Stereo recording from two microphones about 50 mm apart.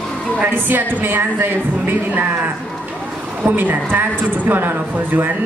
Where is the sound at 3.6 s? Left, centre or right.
Right.